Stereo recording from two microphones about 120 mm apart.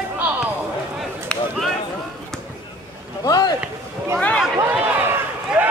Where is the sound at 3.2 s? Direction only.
30° left (ahead or behind).